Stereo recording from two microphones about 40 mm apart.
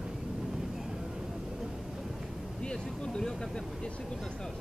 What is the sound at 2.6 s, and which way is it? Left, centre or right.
Vehicle, left.